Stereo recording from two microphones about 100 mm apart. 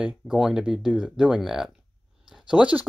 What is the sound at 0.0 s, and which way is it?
Speech, 5° right (ahead or behind).